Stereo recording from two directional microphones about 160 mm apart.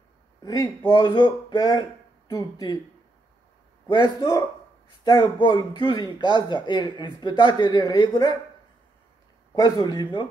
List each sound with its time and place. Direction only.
0.4 s speech: 20° left (ahead or behind)
3.9 s speech: 25° left (ahead or behind)
9.6 s speech: 25° left (ahead or behind)